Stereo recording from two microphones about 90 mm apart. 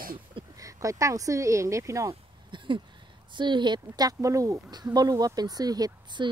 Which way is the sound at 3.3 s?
60° right (ahead or behind).